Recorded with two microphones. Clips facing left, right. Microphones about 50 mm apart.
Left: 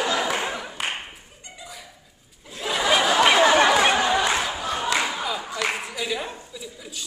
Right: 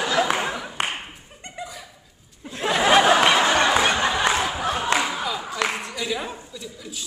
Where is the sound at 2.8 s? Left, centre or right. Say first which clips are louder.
Right 4 dB; right.